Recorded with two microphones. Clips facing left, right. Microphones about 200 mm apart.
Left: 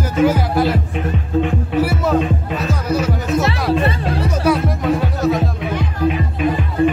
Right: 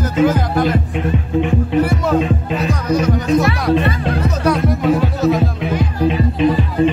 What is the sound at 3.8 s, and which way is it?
Music, 30° left (ahead or behind).